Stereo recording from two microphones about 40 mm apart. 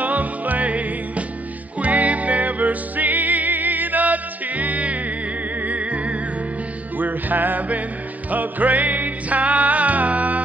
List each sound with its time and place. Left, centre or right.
0.0 s music: right
7.0 s music: right